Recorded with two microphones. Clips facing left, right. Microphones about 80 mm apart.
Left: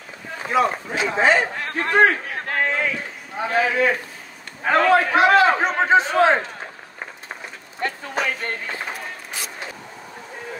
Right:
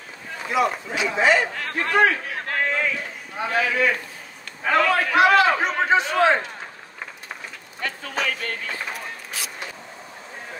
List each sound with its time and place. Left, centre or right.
0.5 s a man's voice: left
7.8 s speech: left